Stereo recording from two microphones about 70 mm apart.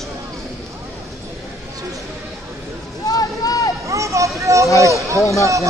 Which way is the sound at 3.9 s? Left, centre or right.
Right.